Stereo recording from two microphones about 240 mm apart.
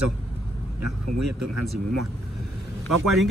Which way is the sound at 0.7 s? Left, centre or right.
Right.